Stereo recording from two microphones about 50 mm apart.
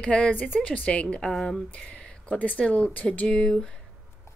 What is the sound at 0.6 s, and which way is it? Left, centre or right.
A woman's voice, left.